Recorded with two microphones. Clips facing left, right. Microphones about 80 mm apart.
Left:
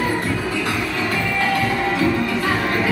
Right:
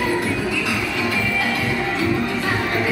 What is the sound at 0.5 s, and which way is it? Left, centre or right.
Music, left.